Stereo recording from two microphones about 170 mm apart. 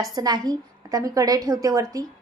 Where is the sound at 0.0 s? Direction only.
25° right (ahead or behind).